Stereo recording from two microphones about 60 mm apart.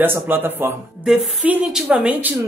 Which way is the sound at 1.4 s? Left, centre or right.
Centre.